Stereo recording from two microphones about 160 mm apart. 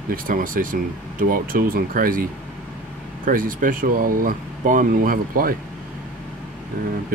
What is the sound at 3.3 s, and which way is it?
Speech, 60° right (ahead or behind).